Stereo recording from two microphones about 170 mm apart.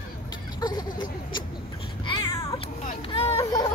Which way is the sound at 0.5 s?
25° left (ahead or behind).